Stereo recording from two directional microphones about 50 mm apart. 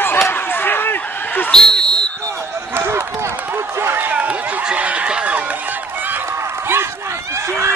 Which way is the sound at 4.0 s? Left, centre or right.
Right.